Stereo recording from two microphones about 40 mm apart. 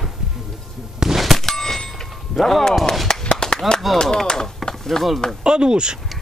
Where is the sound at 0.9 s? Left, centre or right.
Centre.